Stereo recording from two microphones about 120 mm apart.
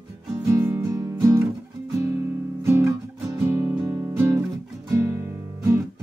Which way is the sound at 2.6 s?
20° right (ahead or behind).